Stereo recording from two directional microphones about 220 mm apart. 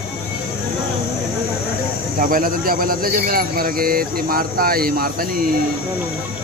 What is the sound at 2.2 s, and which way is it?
Speech, 40° right (ahead or behind).